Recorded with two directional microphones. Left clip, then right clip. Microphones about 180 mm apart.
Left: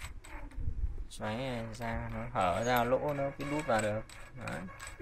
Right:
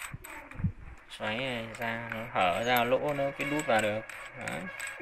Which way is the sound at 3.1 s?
Centre (ahead or behind).